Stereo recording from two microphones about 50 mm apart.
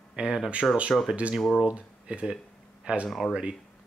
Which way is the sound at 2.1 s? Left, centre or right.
Centre.